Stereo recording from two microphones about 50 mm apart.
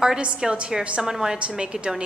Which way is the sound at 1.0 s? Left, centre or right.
Centre.